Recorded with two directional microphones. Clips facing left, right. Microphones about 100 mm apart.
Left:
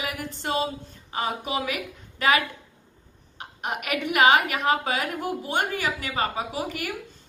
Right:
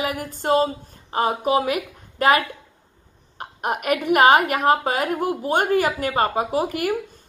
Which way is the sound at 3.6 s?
45° right (ahead or behind).